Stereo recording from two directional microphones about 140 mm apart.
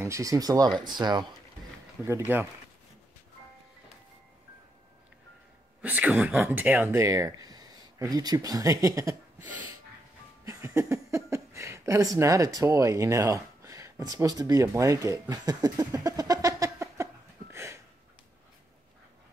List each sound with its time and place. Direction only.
0.0 s speech: 20° right (ahead or behind)
2.0 s speech: 15° right (ahead or behind)
5.8 s speech: 10° right (ahead or behind)
10.4 s speech: 20° right (ahead or behind)